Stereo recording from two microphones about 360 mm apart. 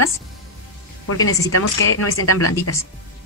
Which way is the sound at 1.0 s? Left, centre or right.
Left.